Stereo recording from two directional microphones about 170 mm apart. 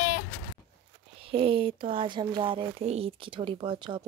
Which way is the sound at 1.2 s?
30° right (ahead or behind).